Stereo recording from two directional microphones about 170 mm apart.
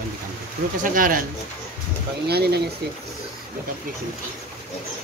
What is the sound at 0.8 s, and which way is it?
Speech, 55° right (ahead or behind).